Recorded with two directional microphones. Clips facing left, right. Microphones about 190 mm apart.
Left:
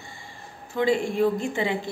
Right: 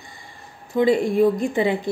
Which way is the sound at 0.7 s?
20° right (ahead or behind).